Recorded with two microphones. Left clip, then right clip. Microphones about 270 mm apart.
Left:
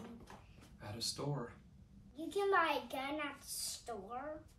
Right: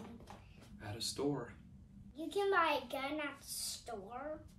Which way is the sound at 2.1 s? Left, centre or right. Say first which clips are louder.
Even; centre.